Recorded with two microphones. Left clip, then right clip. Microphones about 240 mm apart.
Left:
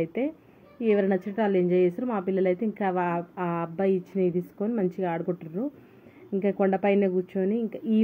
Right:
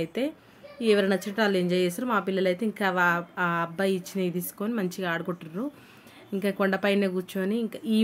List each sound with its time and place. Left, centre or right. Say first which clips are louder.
0.0 s a woman's voice: left 1 dB; centre
6.7 s speech: left 1 dB; right
7.0 s speech: left 3 dB; centre